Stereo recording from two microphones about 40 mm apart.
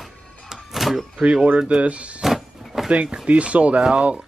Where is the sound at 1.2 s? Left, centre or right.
Centre; by 2.2 s right.